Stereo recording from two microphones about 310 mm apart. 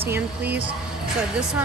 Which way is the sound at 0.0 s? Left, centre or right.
Centre.